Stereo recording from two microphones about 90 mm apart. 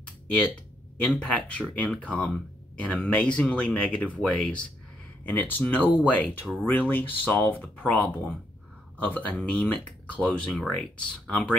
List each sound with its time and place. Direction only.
1.0 s speech: 15° left (ahead or behind)